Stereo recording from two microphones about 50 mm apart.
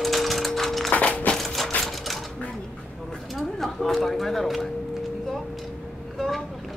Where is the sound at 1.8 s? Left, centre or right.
Centre.